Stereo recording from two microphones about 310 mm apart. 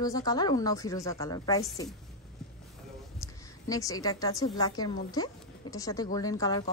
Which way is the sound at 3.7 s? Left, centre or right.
Centre.